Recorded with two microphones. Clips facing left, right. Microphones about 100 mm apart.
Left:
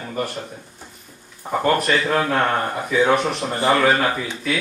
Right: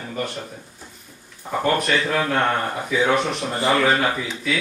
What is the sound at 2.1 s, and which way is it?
Speech, 35° left (ahead or behind).